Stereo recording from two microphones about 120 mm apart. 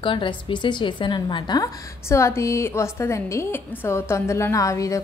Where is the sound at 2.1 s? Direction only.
25° left (ahead or behind).